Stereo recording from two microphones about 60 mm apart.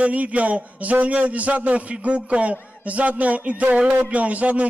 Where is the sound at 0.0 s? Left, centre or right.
Right.